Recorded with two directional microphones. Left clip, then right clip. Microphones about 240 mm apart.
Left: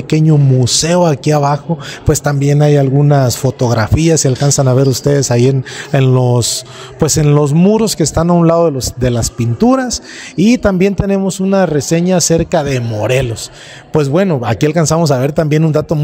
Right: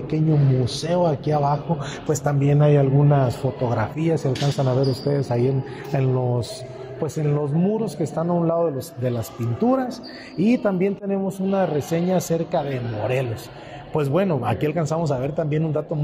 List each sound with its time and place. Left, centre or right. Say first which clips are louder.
0.1 s a man's voice: left 9 dB; left